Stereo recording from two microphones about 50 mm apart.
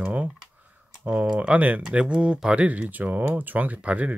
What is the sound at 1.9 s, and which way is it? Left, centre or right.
Speech, right.